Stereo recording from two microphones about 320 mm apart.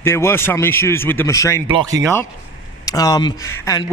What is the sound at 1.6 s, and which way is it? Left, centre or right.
Speech, centre.